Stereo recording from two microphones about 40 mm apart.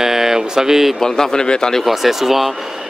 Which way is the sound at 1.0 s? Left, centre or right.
Centre.